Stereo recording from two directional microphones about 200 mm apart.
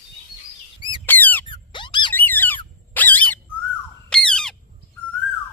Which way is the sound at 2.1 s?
10° left (ahead or behind).